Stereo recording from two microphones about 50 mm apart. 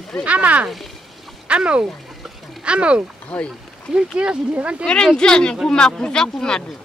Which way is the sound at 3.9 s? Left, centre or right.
Centre.